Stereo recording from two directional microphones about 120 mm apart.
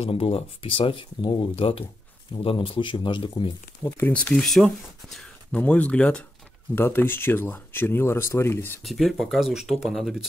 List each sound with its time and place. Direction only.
0.0 s speech: 50° left (ahead or behind)
3.8 s speech: 20° left (ahead or behind)
8.8 s speech: centre (ahead or behind)